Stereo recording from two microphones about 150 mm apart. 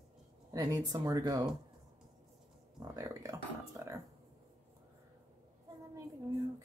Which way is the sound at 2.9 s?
20° right (ahead or behind).